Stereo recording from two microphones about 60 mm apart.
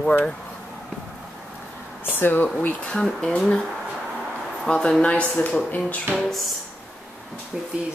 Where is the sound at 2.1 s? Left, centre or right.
Left.